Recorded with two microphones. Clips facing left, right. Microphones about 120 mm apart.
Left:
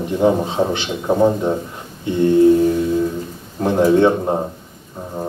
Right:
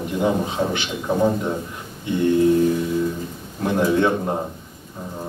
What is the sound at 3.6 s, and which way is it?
Speech, 30° left (ahead or behind).